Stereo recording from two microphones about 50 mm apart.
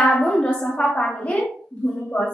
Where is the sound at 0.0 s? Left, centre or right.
Left.